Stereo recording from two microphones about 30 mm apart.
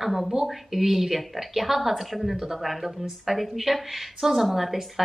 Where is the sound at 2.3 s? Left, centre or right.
Centre.